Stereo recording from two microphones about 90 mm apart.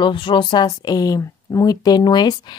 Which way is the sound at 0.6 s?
45° left (ahead or behind).